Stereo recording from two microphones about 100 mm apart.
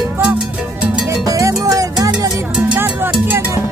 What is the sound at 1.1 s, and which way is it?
Music, 35° right (ahead or behind).